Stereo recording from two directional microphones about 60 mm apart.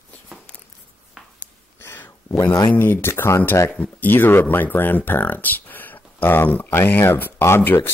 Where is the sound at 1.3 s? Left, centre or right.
Left.